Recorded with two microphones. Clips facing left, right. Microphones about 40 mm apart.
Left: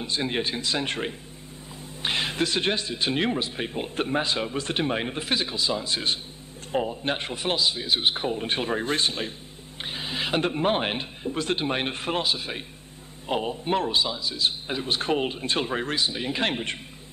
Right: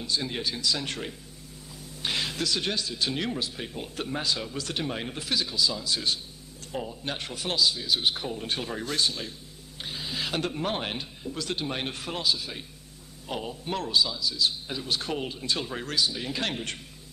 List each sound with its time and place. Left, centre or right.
0.0 s a man's voice: left